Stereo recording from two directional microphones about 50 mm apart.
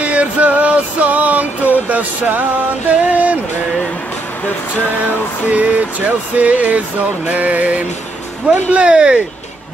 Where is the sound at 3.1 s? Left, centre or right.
Right.